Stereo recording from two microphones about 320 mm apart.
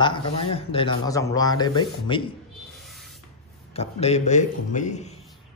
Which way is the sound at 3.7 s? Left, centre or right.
Centre.